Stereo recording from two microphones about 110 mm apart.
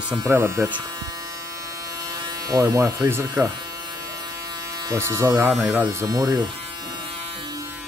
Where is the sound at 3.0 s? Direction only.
25° right (ahead or behind).